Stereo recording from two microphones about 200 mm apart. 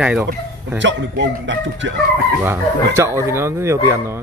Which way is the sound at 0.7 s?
65° right (ahead or behind).